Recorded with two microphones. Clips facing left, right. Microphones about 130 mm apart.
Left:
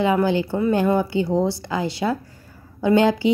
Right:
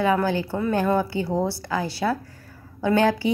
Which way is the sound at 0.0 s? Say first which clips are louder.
Left 3 dB; 20° left (ahead or behind).